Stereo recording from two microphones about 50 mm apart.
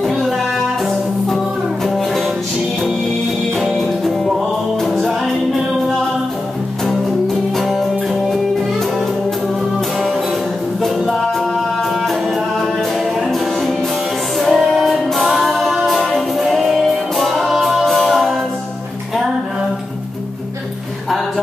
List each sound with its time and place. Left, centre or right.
0.0 s music: centre
1.9 s music: centre
3.5 s music: centre
7.5 s music: centre
10.8 s music: centre